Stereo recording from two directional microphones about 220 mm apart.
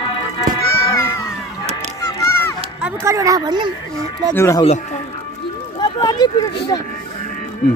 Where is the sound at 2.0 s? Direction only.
15° left (ahead or behind).